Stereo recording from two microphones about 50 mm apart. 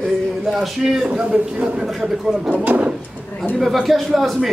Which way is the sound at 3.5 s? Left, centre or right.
Centre.